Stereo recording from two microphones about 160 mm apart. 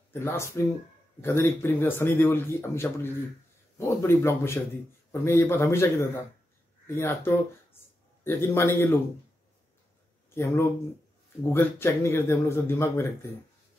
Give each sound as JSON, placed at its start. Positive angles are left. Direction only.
{"t": 0.2, "sound": "speech", "side_deg": 15}
{"t": 10.3, "sound": "speech", "side_deg": 15}